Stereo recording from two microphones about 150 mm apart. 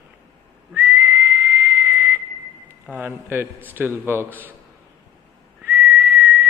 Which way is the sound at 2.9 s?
15° right (ahead or behind).